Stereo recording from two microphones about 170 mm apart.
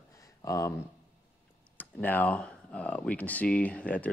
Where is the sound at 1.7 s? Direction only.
10° left (ahead or behind).